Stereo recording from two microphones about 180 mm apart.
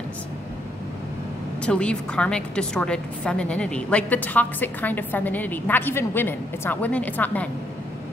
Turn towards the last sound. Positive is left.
turn(degrees=10)  # may be behind; listen again after turning